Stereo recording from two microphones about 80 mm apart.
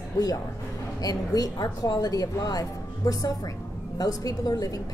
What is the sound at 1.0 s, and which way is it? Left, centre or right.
Speech, left.